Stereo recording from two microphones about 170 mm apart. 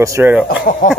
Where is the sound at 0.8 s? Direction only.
50° left (ahead or behind).